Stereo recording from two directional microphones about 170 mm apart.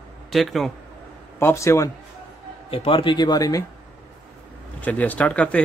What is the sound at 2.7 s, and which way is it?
Speech, 30° left (ahead or behind).